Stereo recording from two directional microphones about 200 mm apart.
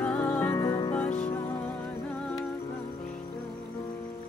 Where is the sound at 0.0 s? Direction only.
5° left (ahead or behind).